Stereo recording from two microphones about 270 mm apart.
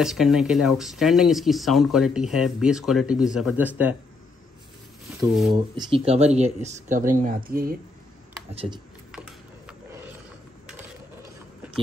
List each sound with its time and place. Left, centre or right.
0.0 s speech: centre
5.5 s speech: centre
8.5 s speech: centre
9.1 s a sound: centre